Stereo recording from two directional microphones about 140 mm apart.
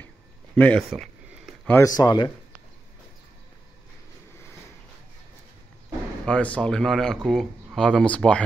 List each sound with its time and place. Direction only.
0.6 s a sound: 5° left (ahead or behind)
1.7 s speech: 20° left (ahead or behind)
6.2 s speech: 10° left (ahead or behind)